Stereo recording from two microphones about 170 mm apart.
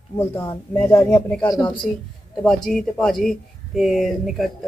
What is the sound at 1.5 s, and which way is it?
Speech, 30° left (ahead or behind).